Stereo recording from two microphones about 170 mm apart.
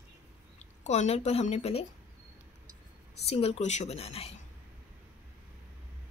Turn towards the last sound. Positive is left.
turn(degrees=35)  # may be behind; listen again after turning